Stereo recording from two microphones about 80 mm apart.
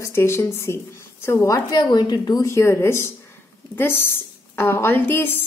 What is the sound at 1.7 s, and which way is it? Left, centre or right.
Speech, left.